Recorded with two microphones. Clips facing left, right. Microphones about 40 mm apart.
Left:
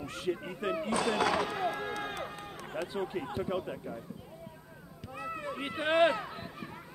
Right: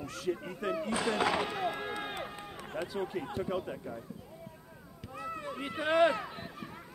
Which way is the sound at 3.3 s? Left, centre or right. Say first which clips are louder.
Left 1 dB; centre.